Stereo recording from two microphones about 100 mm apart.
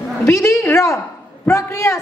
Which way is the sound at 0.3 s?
30° left (ahead or behind).